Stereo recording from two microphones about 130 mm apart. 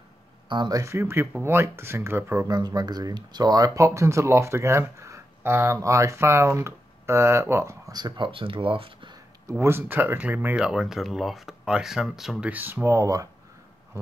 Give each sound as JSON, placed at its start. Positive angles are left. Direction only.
{"t": 0.5, "sound": "speech", "side_deg": -35}
{"t": 9.5, "sound": "speech", "side_deg": -20}